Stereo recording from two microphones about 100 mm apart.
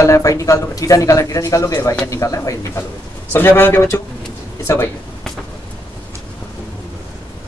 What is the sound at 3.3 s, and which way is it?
Speech, 20° left (ahead or behind).